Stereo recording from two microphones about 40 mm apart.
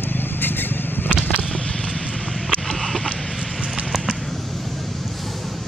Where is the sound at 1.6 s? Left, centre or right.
Left.